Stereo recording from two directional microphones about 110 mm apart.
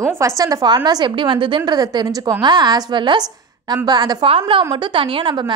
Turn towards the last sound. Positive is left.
turn(degrees=-45)  # may be behind; listen again after turning